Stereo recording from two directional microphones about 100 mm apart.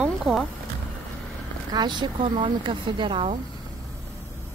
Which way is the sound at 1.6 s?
45° right (ahead or behind).